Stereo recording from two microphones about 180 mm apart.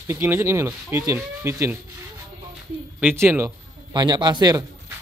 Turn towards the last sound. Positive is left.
turn(degrees=-20)  # may be behind; listen again after turning